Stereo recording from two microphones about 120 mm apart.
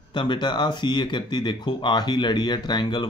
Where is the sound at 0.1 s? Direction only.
40° left (ahead or behind).